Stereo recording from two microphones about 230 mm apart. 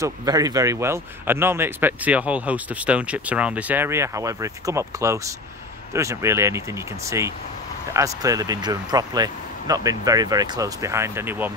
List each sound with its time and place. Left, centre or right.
0.0 s speech: centre